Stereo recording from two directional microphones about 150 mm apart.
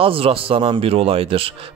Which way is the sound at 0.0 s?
40° right (ahead or behind).